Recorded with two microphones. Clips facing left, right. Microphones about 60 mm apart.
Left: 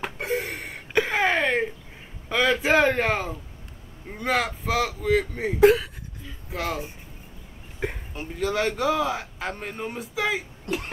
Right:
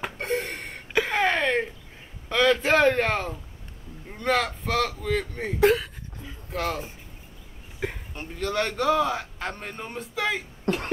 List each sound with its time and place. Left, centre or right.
0.0 s a sound: centre
2.2 s a man's voice: centre
10.7 s cough: right